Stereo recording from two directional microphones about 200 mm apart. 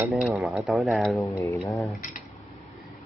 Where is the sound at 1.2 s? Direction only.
15° left (ahead or behind).